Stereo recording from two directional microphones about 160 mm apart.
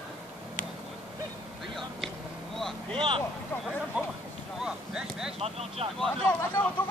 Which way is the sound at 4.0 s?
10° right (ahead or behind).